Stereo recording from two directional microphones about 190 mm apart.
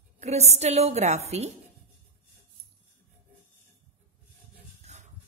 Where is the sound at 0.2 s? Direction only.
35° right (ahead or behind).